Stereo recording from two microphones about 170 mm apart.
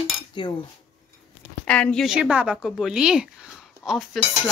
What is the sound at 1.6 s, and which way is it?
A woman's voice, 5° left (ahead or behind).